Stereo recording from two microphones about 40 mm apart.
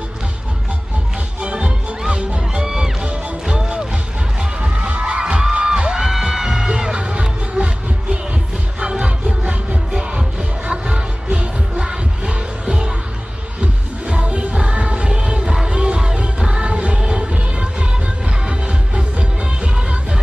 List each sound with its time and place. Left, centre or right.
1.4 s music: right
5.0 s music: right
11.2 s music: right